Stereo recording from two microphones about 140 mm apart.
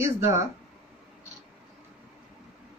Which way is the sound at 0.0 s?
20° right (ahead or behind).